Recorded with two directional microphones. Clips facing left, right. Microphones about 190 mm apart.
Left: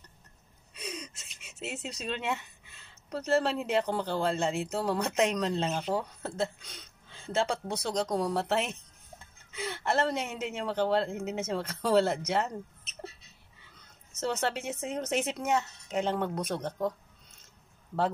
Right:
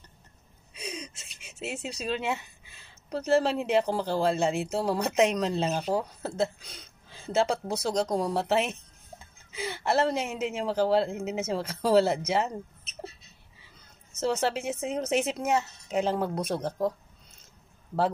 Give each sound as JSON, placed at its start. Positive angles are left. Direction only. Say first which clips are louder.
{"t": 0.7, "sound": "a sound", "louder": "right 2 dB", "side_deg": 0}
{"t": 3.9, "sound": "speech", "louder": "right 3 dB", "side_deg": 0}
{"t": 14.2, "sound": "speech", "louder": "right 4 dB", "side_deg": 0}
{"t": 16.2, "sound": "speech", "louder": "right 3 dB", "side_deg": -30}
{"t": 16.6, "sound": "speech", "louder": "right 4 dB", "side_deg": -5}